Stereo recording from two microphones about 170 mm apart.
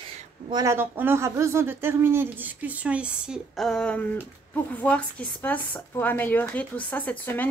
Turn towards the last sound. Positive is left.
turn(degrees=10)  # may be behind; listen again after turning